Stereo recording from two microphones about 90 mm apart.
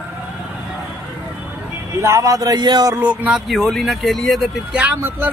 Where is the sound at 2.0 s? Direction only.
35° right (ahead or behind).